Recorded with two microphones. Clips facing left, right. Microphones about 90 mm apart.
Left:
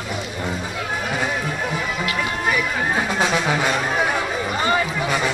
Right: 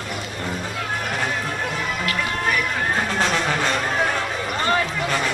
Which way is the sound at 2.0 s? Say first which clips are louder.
Left 1 dB; 10° left (ahead or behind).